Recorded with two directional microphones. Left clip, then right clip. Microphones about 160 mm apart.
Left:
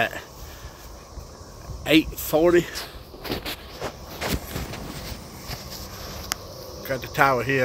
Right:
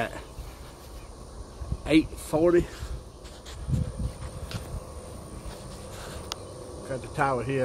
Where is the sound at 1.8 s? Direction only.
10° left (ahead or behind).